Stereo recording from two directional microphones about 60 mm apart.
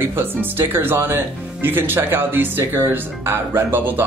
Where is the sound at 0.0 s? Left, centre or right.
Right.